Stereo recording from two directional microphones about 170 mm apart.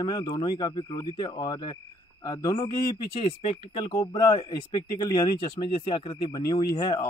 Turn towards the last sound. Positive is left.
turn(degrees=25)  # may be behind; listen again after turning